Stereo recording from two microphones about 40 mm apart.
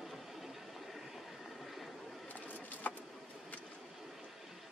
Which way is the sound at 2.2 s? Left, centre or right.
Left.